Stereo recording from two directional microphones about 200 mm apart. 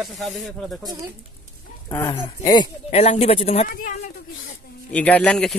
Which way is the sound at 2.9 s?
35° left (ahead or behind).